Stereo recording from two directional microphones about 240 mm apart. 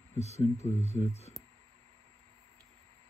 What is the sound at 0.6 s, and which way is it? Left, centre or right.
Speech, left.